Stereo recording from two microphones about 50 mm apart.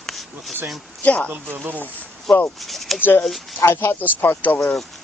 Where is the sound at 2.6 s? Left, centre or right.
Centre.